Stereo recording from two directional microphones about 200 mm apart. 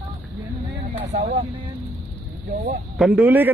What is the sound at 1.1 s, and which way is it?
Speech, 35° right (ahead or behind).